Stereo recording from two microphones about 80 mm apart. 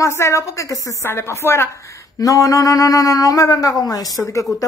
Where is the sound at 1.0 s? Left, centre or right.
Left.